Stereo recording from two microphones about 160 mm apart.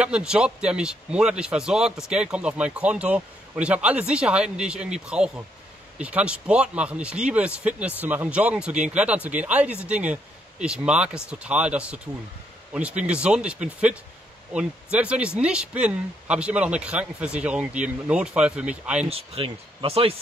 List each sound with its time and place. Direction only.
0.0 s speech: 5° right (ahead or behind)
19.0 s speech: 35° right (ahead or behind)